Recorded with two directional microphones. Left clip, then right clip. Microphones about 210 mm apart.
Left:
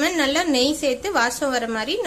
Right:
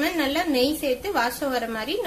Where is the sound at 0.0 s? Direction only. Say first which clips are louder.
Left 4 dB; 15° left (ahead or behind).